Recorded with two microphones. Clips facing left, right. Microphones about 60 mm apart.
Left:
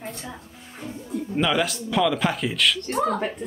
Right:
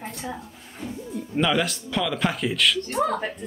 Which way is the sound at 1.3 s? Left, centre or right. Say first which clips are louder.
Even; centre.